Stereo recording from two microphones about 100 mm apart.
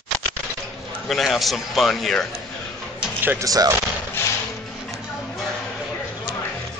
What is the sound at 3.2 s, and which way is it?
Speech, 35° right (ahead or behind).